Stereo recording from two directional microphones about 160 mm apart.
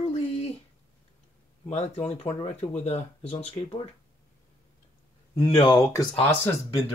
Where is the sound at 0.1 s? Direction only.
40° left (ahead or behind).